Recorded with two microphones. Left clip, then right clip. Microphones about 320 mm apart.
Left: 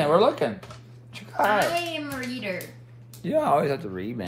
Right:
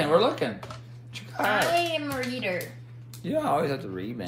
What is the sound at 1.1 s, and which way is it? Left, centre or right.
Cat, centre.